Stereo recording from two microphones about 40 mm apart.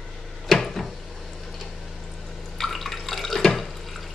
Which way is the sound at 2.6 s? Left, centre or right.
Centre.